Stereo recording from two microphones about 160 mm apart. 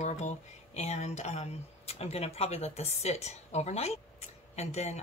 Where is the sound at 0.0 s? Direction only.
45° left (ahead or behind).